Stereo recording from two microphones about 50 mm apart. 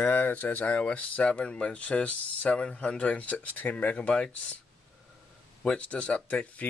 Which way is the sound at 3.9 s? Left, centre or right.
Centre.